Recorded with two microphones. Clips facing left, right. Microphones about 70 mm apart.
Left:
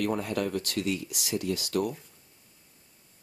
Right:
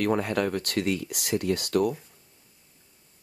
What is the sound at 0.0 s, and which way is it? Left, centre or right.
Speech, right.